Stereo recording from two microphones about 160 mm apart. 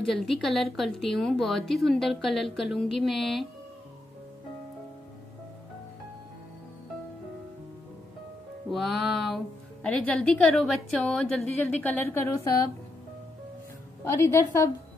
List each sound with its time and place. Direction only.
0.1 s a woman's voice: centre (ahead or behind)
8.6 s a woman's voice: centre (ahead or behind); by 12.6 s 15° left (ahead or behind)
14.0 s a woman's voice: 15° left (ahead or behind)